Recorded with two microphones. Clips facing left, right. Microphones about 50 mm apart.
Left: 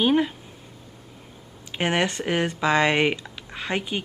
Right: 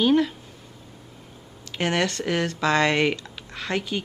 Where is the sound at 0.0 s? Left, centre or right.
Centre.